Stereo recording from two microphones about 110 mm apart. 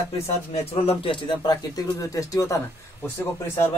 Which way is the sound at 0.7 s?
65° left (ahead or behind).